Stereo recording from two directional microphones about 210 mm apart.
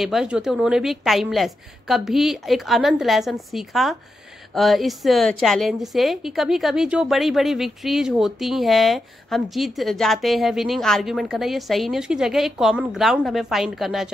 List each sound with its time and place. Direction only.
0.0 s a woman's voice: centre (ahead or behind)